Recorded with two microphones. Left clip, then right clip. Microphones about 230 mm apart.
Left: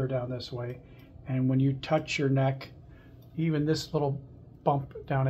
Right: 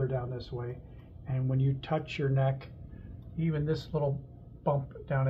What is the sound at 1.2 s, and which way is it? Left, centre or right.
Speech, left.